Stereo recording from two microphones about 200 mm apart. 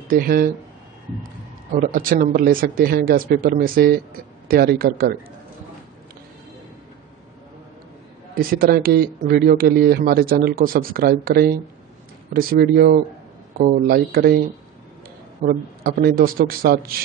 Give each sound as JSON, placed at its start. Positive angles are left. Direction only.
{"t": 0.1, "sound": "speech", "side_deg": -45}
{"t": 1.7, "sound": "speech", "side_deg": -45}
{"t": 8.4, "sound": "speech", "side_deg": -45}
{"t": 15.4, "sound": "speech", "side_deg": -50}